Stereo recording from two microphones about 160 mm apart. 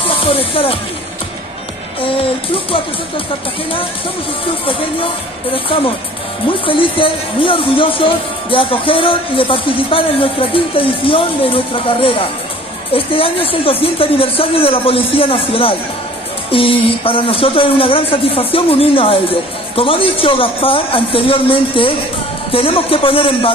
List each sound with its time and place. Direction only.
0.0 s speech: 35° left (ahead or behind)
2.0 s speech: 35° left (ahead or behind)
4.6 s speech: 35° left (ahead or behind)